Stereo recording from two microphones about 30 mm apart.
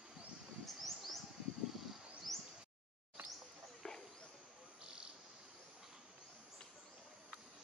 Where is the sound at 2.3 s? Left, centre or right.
Centre.